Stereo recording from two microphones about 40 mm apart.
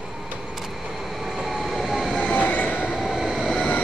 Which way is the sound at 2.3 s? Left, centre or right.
Left.